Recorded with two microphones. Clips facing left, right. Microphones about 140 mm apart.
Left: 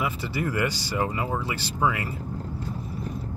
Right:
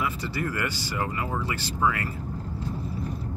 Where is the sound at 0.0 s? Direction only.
20° left (ahead or behind).